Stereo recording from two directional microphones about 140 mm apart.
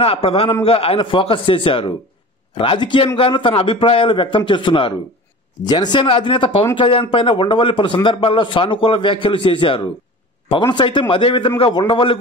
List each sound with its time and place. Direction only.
0.0 s a man's voice: 45° left (ahead or behind)